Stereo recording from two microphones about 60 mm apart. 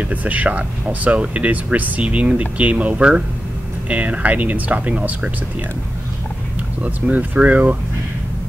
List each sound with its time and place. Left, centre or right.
0.0 s speech: right
6.8 s speech: right